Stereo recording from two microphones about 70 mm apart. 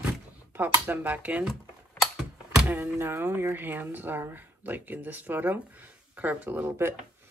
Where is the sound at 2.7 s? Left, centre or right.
Right.